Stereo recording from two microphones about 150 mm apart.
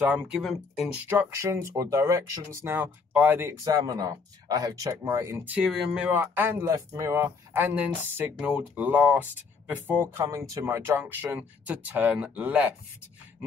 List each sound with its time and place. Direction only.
0.0 s speech: 10° right (ahead or behind)
0.4 s speech: centre (ahead or behind)
1.0 s speech: 15° right (ahead or behind)
3.6 s speech: 25° right (ahead or behind)
5.6 s speech: 5° right (ahead or behind)